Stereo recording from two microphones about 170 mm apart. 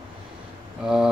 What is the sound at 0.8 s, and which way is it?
Speech, 5° right (ahead or behind).